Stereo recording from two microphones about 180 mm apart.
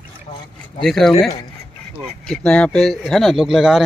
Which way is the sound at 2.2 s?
5° left (ahead or behind).